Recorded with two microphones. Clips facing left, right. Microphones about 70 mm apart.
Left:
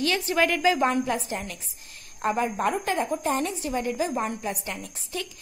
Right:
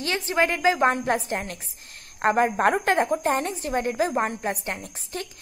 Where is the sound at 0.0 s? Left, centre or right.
Right.